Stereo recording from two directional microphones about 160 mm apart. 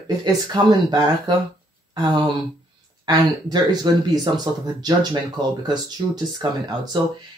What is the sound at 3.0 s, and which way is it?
Speech, 25° right (ahead or behind).